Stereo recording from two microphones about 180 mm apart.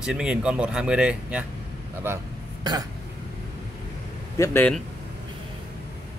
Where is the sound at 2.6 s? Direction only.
25° right (ahead or behind).